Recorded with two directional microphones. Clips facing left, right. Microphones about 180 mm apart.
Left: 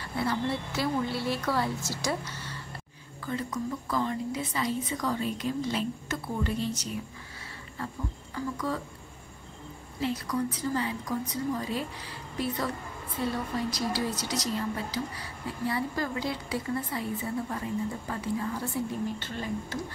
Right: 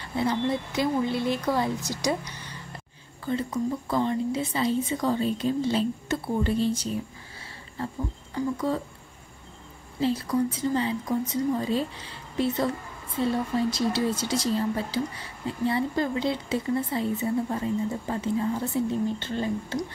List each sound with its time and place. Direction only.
0.1 s a woman's voice: 20° right (ahead or behind)
3.3 s a woman's voice: 25° right (ahead or behind)
8.4 s a woman's voice: 25° right (ahead or behind)
9.9 s a woman's voice: 30° right (ahead or behind)